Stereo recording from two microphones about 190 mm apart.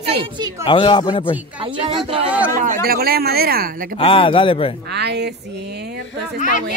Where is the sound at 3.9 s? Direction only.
25° left (ahead or behind).